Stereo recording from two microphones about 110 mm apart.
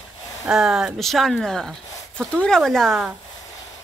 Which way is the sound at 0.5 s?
5° right (ahead or behind).